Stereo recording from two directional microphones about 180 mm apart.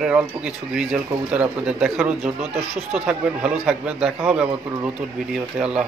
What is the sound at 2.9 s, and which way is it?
Speech, 5° right (ahead or behind).